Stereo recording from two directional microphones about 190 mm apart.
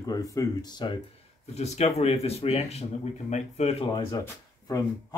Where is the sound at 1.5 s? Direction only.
35° left (ahead or behind).